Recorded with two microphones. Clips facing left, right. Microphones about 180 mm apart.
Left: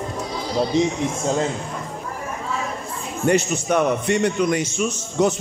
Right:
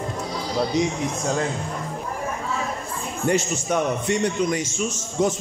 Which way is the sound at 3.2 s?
65° left (ahead or behind).